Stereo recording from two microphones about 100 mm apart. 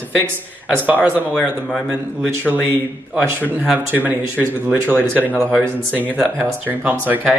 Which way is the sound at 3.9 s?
20° right (ahead or behind).